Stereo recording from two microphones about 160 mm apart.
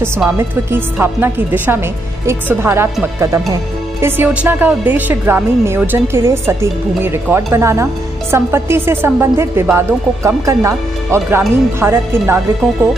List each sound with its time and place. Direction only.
0.4 s a woman's voice: 15° right (ahead or behind)